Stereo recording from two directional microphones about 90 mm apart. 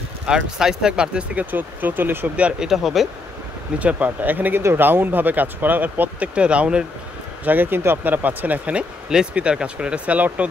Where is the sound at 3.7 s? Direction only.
15° right (ahead or behind).